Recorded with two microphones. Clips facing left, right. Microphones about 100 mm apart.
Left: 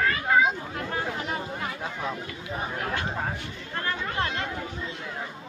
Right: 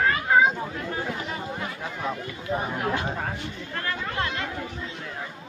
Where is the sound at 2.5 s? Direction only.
25° right (ahead or behind).